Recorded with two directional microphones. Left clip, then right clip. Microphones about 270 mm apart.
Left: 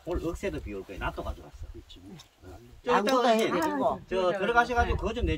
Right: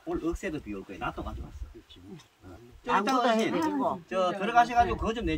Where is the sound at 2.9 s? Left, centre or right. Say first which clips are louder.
Left 2 dB; left.